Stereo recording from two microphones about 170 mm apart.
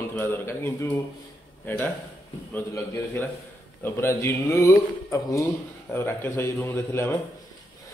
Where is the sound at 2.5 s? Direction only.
10° left (ahead or behind).